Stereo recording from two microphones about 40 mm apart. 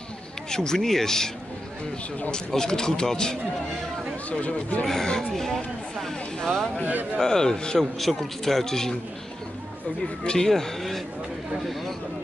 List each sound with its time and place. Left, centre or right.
0.5 s speech: centre
2.3 s speech: centre
4.3 s speech: left
4.8 s speech: centre
8.0 s speech: centre
10.2 s speech: centre